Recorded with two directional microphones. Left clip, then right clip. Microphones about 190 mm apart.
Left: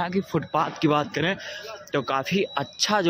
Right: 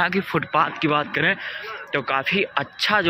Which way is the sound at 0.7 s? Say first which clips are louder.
Right 2 dB; 30° left (ahead or behind).